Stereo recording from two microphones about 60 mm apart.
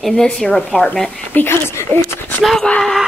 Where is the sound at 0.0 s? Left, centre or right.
Centre.